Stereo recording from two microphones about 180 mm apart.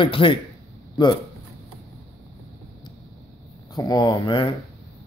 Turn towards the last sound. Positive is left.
turn(degrees=25)  # may be behind; listen again after turning